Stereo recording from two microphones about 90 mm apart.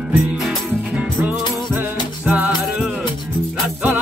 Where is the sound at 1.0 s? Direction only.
15° right (ahead or behind).